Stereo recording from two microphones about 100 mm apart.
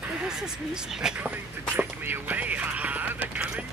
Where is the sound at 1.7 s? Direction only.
15° right (ahead or behind).